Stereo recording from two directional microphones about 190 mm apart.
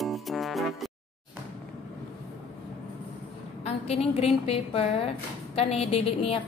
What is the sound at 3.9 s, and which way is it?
A woman's voice, 35° left (ahead or behind).